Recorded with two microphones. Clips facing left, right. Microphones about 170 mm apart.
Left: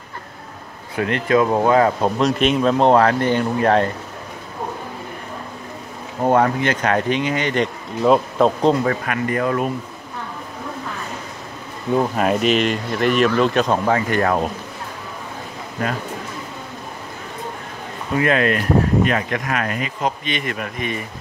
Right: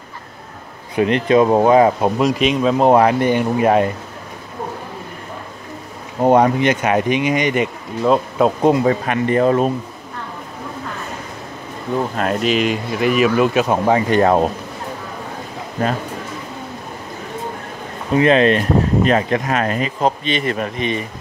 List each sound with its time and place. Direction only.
0.9 s speech: 20° right (ahead or behind)
2.2 s speech: centre (ahead or behind)
2.9 s speech: 15° right (ahead or behind)
6.2 s speech: 15° right (ahead or behind)
9.0 s speech: 25° right (ahead or behind)
12.2 s speech: centre (ahead or behind)
13.8 s speech: 20° right (ahead or behind)
15.8 s speech: 30° right (ahead or behind)
18.1 s speech: 25° right (ahead or behind)